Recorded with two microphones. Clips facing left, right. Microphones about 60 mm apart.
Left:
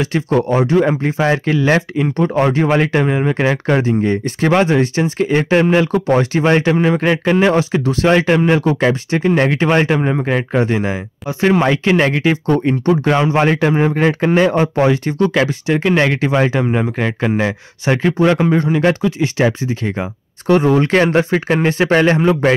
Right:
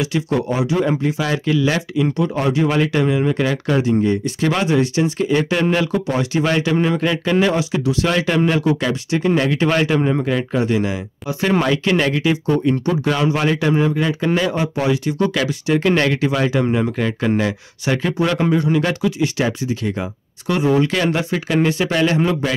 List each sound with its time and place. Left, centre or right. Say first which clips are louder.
0.0 s speech: left 4 dB; left
5.9 s speech: left 5 dB; left
9.9 s speech: even; centre
10.2 s speech: left 3 dB; left